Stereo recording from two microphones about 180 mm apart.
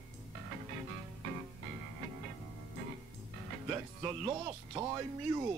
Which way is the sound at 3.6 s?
20° right (ahead or behind).